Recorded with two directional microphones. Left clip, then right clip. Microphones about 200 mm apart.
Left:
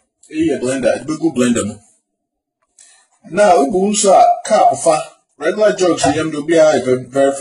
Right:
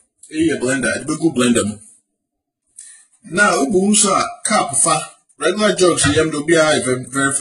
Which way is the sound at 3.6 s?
35° left (ahead or behind).